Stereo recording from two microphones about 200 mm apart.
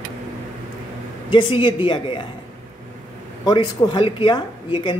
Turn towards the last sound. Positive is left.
turn(degrees=25)  # may be behind; listen again after turning